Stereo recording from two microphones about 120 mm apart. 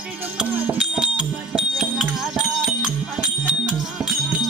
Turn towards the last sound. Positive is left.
turn(degrees=0)  # may be behind; listen again after turning